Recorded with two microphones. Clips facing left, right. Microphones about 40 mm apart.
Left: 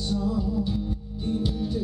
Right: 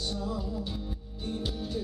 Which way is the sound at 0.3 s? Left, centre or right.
Centre.